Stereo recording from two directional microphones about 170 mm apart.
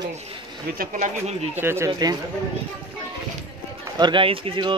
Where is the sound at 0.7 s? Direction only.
60° right (ahead or behind).